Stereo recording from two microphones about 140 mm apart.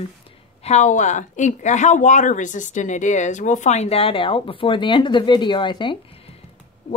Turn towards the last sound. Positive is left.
turn(degrees=35)  # may be behind; listen again after turning